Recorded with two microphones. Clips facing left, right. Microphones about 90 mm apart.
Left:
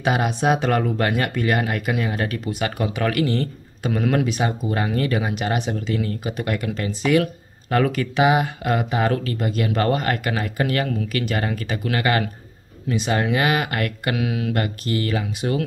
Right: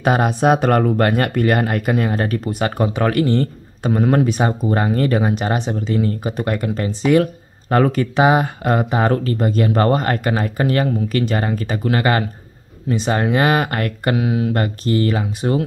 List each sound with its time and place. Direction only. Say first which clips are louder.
0.0 s speech: right 5 dB; 45° right (ahead or behind)